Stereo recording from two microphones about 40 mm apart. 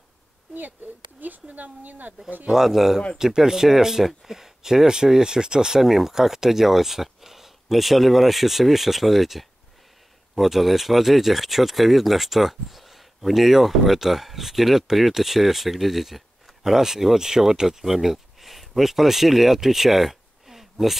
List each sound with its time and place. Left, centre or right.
1.2 s speech: right
2.5 s speech: centre
5.8 s speech: centre